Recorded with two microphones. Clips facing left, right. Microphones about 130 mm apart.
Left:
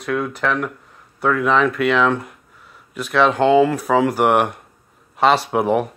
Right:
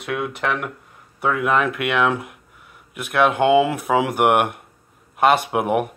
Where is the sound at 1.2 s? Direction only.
5° right (ahead or behind).